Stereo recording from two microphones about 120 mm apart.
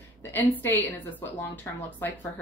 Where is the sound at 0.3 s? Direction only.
15° left (ahead or behind).